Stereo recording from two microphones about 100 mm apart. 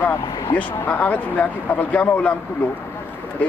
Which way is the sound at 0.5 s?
15° left (ahead or behind).